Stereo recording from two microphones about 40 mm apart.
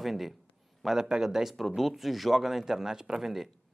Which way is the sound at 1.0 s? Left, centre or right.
Centre.